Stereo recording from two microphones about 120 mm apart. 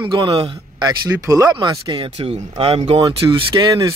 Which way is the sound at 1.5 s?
40° right (ahead or behind).